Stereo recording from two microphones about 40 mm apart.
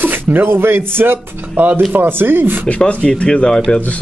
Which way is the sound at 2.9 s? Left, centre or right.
Left.